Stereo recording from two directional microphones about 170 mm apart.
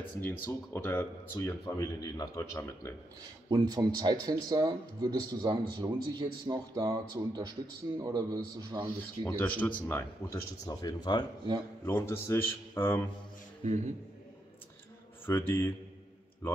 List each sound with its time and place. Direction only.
0.2 s speech: 10° left (ahead or behind)
3.4 s speech: 25° right (ahead or behind)
8.8 s speech: 10° left (ahead or behind)
13.7 s a man's voice: 45° right (ahead or behind)
15.2 s speech: 15° left (ahead or behind)